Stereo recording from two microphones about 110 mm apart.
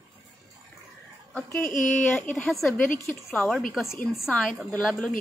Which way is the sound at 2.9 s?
25° left (ahead or behind).